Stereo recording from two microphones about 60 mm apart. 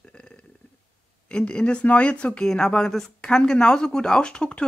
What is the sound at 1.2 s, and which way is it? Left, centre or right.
Speech, centre.